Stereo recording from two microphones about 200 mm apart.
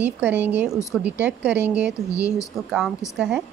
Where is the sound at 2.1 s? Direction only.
15° left (ahead or behind).